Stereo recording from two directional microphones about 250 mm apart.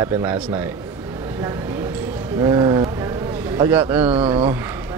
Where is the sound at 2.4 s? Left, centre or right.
Centre.